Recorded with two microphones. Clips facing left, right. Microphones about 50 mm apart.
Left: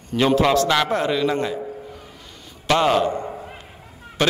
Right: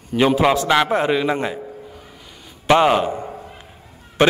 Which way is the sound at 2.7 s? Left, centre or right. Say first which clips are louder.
Right 3 dB; centre.